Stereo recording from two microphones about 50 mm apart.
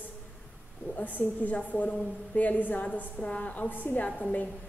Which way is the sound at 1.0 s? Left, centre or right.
Left.